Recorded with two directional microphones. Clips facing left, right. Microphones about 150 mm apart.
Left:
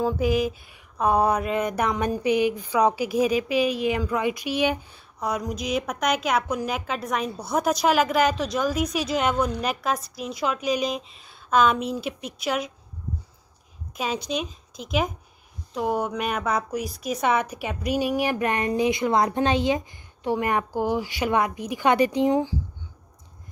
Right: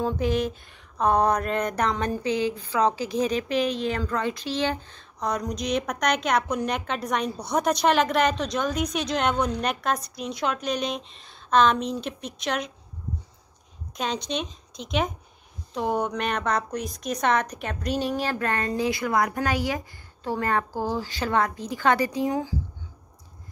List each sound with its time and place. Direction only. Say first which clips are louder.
0.0 s speech: left 2 dB; 5° left (ahead or behind)
13.9 s a woman's voice: left 1 dB; 5° left (ahead or behind); by 22.6 s 20° left (ahead or behind)